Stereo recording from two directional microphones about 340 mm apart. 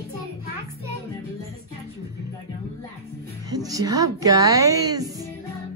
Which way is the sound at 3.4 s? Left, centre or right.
Centre.